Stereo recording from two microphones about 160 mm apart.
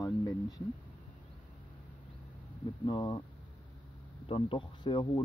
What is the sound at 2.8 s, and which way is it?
Speech, 25° left (ahead or behind).